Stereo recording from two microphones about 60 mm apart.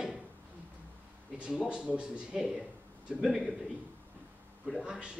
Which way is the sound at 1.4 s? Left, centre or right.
Centre.